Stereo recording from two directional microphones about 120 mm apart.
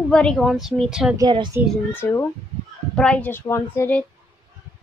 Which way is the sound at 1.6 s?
15° right (ahead or behind).